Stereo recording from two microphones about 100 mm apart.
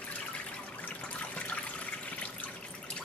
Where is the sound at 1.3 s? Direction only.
15° left (ahead or behind).